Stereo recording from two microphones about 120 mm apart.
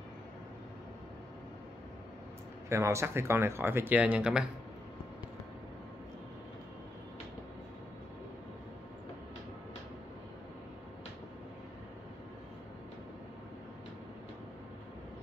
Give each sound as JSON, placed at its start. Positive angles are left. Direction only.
{"t": 2.7, "sound": "speech", "side_deg": -25}